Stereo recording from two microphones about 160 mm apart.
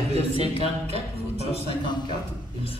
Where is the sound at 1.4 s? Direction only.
35° left (ahead or behind).